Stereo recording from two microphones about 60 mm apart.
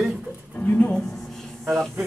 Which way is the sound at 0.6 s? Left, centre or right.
Left.